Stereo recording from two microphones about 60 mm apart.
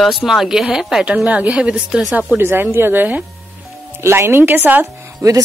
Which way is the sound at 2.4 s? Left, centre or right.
Right.